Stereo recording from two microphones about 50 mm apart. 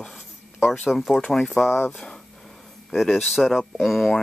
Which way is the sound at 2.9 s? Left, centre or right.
Centre.